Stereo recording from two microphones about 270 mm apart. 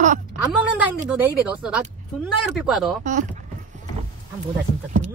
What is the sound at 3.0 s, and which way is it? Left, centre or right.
Speech, right.